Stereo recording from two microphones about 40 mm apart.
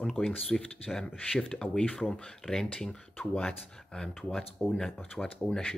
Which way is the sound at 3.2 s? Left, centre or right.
Left.